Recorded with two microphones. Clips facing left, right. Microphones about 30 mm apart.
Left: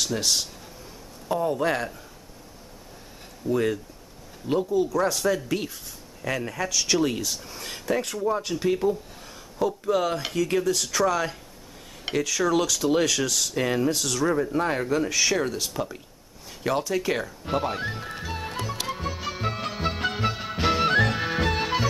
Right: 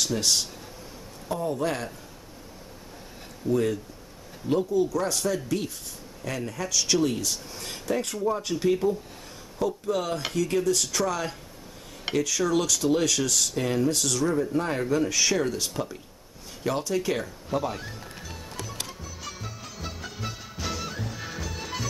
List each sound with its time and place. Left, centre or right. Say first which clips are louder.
0.0 s speech: even; centre
1.3 s speech: left 4 dB; centre
3.4 s speech: left 1 dB; centre
13.6 s speech: left 2 dB; centre
14.3 s speech: left 2 dB; centre
17.6 s music: left 5 dB; left
19.1 s music: left 7 dB; left
19.4 s music: left 10 dB; left
20.9 s music: left 15 dB; left
21.2 s music: left 10 dB; left